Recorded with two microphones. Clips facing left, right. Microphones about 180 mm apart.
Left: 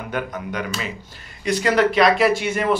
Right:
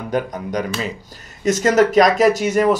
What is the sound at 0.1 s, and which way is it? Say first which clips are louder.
Speech: right 6 dB; 40° right (ahead or behind).